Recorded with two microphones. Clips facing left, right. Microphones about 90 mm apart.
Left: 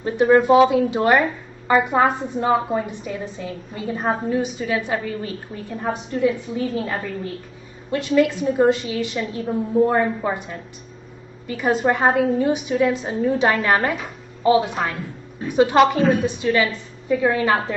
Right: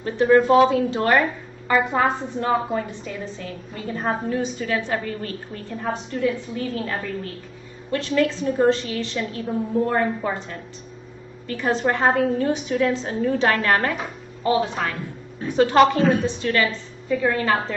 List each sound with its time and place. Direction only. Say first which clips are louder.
0.0 s a woman's voice: left 1 dB; 15° left (ahead or behind)